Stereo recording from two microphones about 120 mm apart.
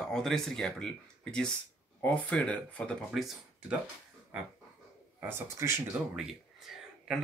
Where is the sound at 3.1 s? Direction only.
Centre (ahead or behind).